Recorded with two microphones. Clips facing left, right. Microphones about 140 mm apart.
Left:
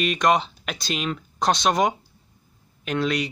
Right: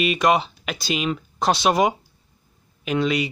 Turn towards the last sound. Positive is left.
turn(degrees=0)  # may be behind; listen again after turning